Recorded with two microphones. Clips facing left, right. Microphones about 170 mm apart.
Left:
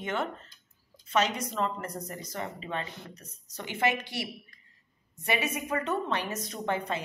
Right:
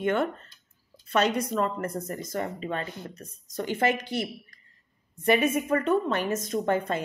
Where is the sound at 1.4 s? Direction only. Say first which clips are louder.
Right 4 dB; 50° right (ahead or behind).